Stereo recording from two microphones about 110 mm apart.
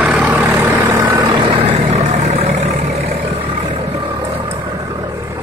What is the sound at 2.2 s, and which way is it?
Vehicle, 70° right (ahead or behind).